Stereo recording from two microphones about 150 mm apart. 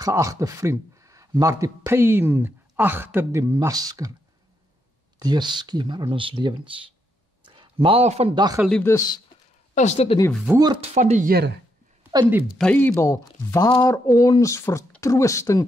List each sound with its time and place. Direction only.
0.0 s speech: 20° right (ahead or behind)
5.2 s a man's voice: 30° right (ahead or behind)
8.5 s speech: 5° left (ahead or behind)
8.8 s speech: 25° left (ahead or behind)
9.8 s speech: 45° left (ahead or behind)
10.6 s speech: 30° right (ahead or behind)
11.0 s speech: 55° right (ahead or behind)
12.1 s speech: 30° right (ahead or behind)
12.5 s speech: 10° left (ahead or behind)